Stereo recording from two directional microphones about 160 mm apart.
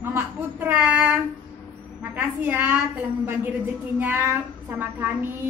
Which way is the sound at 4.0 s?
10° right (ahead or behind).